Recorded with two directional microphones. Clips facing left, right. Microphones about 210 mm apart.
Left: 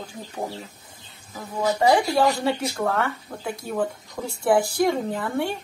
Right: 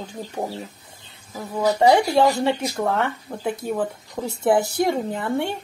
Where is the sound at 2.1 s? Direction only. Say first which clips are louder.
Right 3 dB; 25° right (ahead or behind).